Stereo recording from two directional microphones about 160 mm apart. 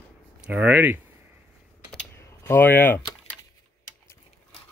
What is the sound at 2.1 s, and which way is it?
Typing, 15° left (ahead or behind).